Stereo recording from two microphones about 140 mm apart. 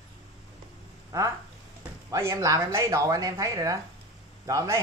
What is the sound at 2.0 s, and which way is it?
Speech, 20° right (ahead or behind).